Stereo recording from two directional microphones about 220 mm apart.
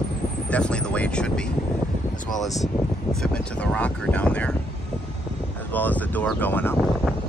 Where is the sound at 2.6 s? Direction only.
Centre (ahead or behind).